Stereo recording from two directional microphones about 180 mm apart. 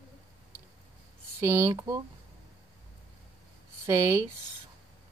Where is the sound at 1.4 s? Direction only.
15° right (ahead or behind).